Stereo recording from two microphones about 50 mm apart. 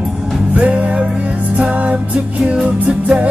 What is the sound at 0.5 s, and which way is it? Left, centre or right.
Music, right.